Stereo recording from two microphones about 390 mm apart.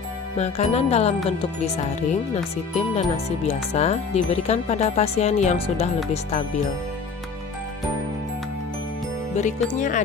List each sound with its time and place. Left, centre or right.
0.4 s speech: centre
2.9 s speech: centre
9.3 s music: centre